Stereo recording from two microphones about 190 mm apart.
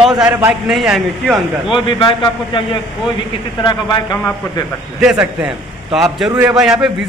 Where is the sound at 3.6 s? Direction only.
25° left (ahead or behind).